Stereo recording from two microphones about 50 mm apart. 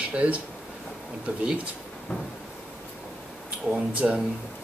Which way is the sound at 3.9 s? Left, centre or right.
Right.